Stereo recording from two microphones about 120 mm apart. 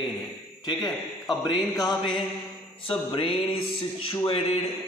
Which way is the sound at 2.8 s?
50° left (ahead or behind).